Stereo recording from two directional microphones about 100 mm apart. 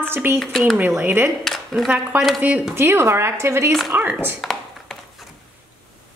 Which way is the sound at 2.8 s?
25° right (ahead or behind).